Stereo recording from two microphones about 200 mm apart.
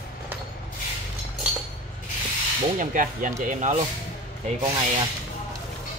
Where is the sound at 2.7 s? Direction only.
40° right (ahead or behind).